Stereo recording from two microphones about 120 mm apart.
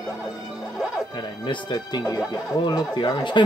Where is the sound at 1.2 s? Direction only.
40° left (ahead or behind).